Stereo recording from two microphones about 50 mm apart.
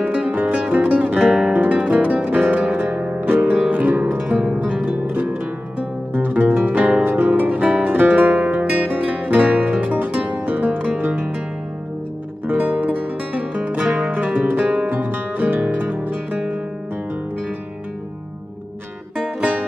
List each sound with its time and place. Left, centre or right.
0.0 s music: right
0.3 s music: right
2.9 s music: centre
3.2 s music: right
7.4 s music: right
7.8 s music: right
8.2 s music: right
12.4 s music: right
14.6 s music: right
14.9 s music: right
19.1 s music: right